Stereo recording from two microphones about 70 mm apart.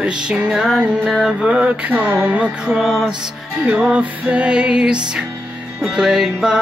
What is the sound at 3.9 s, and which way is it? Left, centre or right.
Music, centre.